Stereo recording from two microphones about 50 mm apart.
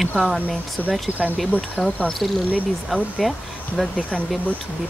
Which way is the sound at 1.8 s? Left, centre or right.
Centre.